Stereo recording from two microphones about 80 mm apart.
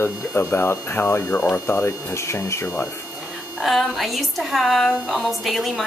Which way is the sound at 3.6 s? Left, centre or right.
Centre.